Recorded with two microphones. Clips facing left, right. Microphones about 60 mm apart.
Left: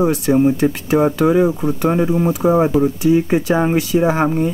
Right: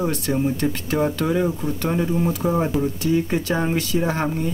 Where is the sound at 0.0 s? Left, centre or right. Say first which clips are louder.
Left 8 dB; centre.